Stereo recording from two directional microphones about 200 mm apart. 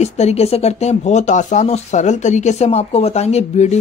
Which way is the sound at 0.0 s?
35° left (ahead or behind).